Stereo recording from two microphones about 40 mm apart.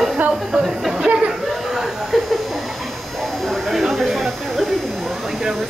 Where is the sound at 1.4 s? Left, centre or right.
Centre.